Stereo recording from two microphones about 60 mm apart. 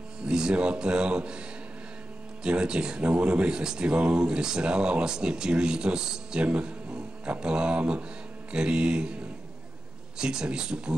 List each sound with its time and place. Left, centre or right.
0.3 s speech: centre
2.4 s speech: centre
10.1 s speech: centre